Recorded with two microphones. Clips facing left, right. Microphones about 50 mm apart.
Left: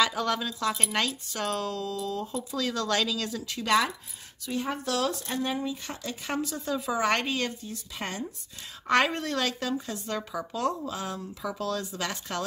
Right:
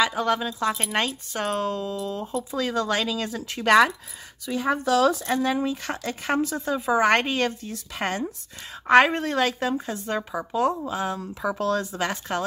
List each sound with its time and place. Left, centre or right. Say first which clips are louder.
0.0 s a woman's voice: right 4 dB; centre
3.3 s speech: right 6 dB; right
5.3 s speech: right 6 dB; right
6.3 s speech: right 5 dB; right
8.8 s a woman's voice: right 7 dB; right
11.1 s speech: right 6 dB; right